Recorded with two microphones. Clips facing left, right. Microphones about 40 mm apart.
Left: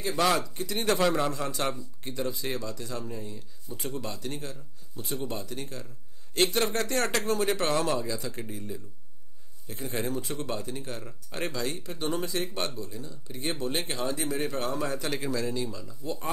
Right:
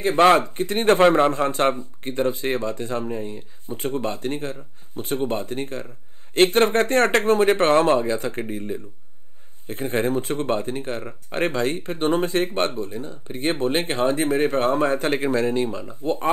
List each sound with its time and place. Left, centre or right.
0.0 s speech: right